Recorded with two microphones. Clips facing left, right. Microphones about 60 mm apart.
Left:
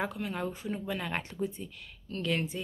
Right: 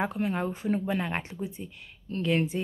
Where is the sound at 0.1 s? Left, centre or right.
Right.